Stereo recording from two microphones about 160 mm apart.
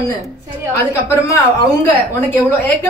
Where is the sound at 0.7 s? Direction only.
15° left (ahead or behind).